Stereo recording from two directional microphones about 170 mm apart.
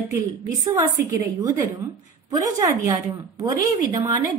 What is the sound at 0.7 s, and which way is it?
A woman's voice, 20° right (ahead or behind).